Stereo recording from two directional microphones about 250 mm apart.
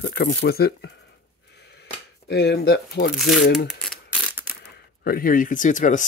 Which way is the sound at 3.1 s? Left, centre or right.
Centre.